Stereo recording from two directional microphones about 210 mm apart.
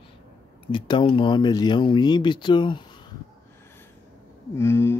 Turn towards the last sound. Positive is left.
turn(degrees=10)  # may be behind; listen again after turning